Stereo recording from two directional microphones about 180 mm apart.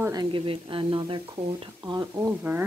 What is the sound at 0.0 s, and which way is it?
Speech, 20° right (ahead or behind).